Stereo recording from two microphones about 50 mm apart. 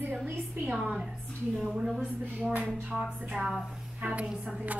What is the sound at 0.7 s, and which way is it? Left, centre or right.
Speech, right.